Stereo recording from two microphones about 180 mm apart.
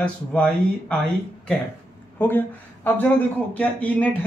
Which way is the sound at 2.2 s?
10° left (ahead or behind).